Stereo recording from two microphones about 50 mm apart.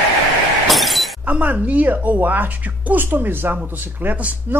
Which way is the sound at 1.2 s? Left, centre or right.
Right.